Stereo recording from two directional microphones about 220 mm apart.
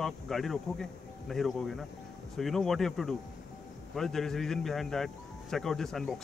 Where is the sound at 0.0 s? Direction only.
Centre (ahead or behind).